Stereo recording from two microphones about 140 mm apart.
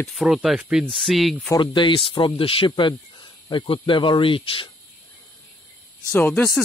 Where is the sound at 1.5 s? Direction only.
35° left (ahead or behind).